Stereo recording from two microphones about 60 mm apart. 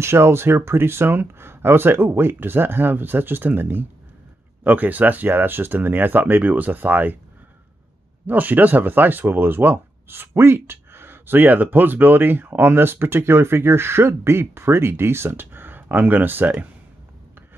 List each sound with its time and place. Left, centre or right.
0.0 s speech: right
8.3 s speech: right